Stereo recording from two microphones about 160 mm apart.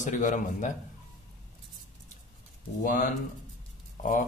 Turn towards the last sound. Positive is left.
turn(degrees=55)  # may be behind; listen again after turning